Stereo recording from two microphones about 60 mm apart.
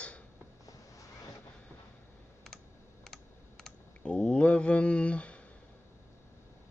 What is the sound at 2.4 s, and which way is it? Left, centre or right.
Computer keyboard, centre.